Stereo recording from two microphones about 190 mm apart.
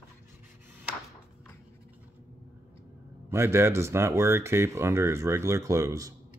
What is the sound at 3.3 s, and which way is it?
Speech, 15° right (ahead or behind).